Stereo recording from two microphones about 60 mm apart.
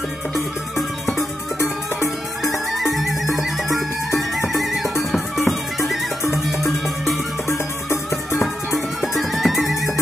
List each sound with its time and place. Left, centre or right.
2.4 s music: centre
7.4 s music: left
8.4 s music: centre